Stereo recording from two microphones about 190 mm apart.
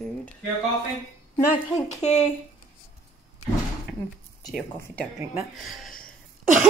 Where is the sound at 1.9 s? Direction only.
35° left (ahead or behind).